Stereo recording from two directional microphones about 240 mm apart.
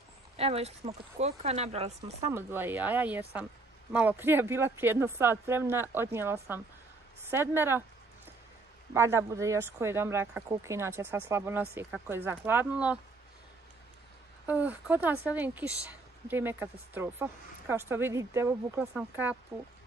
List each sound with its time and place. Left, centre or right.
0.4 s speech: right
2.3 s speech: centre
8.9 s speech: centre
14.5 s speech: centre